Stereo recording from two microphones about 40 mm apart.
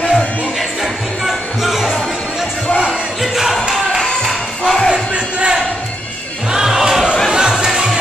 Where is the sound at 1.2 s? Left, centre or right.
Centre.